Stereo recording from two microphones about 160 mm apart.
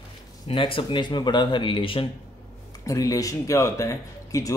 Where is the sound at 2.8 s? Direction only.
20° left (ahead or behind).